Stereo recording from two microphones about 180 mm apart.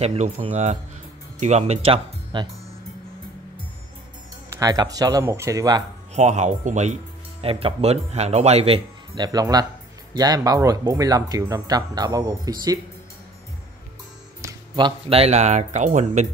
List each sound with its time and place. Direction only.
0.0 s speech: 35° right (ahead or behind)
4.5 s speech: 20° right (ahead or behind)
6.1 s speech: 40° right (ahead or behind); by 12.7 s 20° right (ahead or behind)
14.4 s speech: 30° right (ahead or behind)